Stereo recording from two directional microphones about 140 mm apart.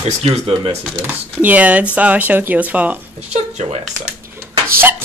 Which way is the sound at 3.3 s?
50° right (ahead or behind).